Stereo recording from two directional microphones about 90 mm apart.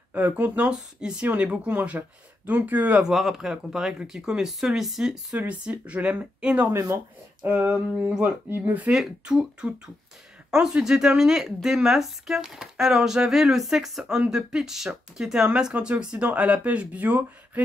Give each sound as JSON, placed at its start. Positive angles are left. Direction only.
{"t": 0.1, "sound": "speech", "side_deg": -20}
{"t": 3.1, "sound": "speech", "side_deg": -5}
{"t": 8.5, "sound": "speech", "side_deg": -20}
{"t": 8.9, "sound": "speech", "side_deg": -5}